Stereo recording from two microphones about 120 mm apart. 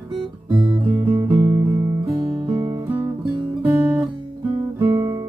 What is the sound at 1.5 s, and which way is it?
Music, 25° right (ahead or behind).